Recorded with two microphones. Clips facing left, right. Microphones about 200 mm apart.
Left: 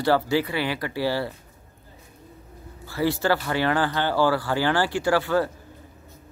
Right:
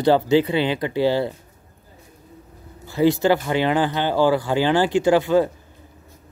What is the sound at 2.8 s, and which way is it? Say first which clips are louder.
Speech: right 6 dB; 20° right (ahead or behind).